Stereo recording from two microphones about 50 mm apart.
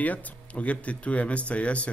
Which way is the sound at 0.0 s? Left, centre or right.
Left.